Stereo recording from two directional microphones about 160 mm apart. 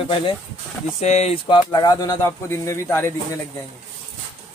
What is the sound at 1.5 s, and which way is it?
Speech, 25° left (ahead or behind).